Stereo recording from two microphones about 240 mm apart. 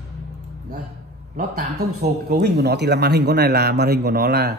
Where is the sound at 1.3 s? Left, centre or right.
Right.